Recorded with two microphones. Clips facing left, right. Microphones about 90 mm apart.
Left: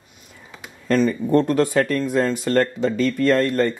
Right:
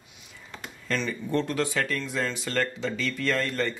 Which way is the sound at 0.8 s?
45° left (ahead or behind).